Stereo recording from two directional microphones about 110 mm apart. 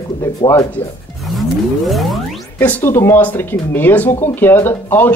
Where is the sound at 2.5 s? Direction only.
20° left (ahead or behind).